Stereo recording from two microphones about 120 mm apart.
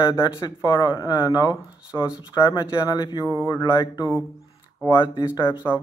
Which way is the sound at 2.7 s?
35° left (ahead or behind).